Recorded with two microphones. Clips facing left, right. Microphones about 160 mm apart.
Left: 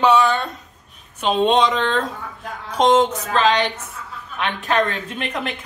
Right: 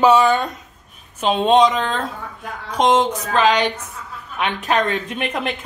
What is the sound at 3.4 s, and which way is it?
Speech, 20° right (ahead or behind).